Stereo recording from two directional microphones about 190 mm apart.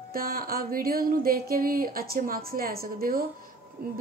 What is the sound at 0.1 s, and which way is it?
A woman's voice, 50° right (ahead or behind).